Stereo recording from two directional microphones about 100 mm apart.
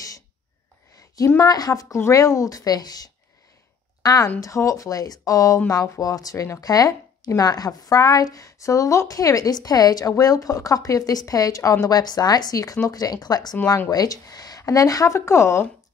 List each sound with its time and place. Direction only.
1.4 s a woman's voice: 40° left (ahead or behind)